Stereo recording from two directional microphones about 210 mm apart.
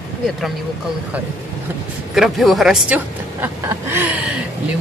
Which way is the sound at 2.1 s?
Centre (ahead or behind).